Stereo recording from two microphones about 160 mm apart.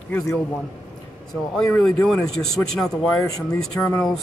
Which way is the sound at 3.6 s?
5° left (ahead or behind).